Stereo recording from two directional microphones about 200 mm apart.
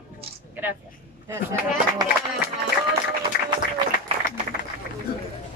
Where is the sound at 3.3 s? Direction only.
50° left (ahead or behind).